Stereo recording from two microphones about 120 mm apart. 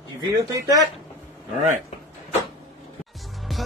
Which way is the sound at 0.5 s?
30° right (ahead or behind).